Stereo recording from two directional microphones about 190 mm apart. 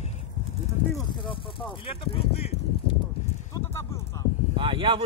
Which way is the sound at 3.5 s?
15° left (ahead or behind).